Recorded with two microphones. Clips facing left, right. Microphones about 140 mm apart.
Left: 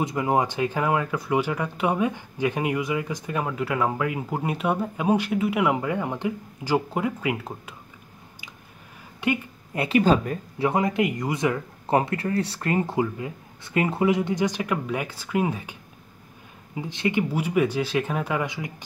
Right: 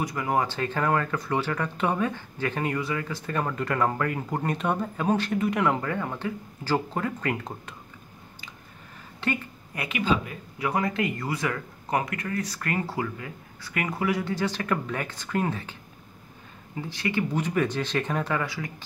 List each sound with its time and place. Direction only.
0.0 s speech: 20° left (ahead or behind)
9.2 s a woman's voice: 15° left (ahead or behind)
9.8 s speech: 35° left (ahead or behind)
10.6 s speech: 20° left (ahead or behind)
16.7 s speech: 20° left (ahead or behind)